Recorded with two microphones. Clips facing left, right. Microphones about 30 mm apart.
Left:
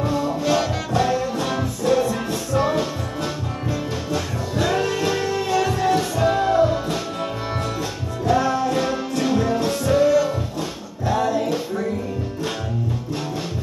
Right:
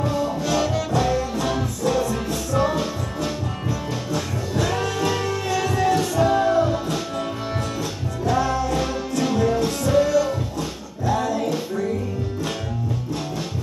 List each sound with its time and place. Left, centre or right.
0.0 s music: centre